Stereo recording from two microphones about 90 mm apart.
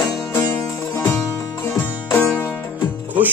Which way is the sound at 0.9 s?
20° left (ahead or behind).